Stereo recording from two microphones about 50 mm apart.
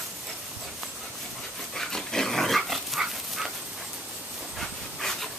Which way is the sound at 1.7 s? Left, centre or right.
Centre.